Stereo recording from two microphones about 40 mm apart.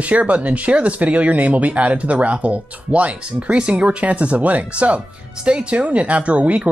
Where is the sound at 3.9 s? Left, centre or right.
Right.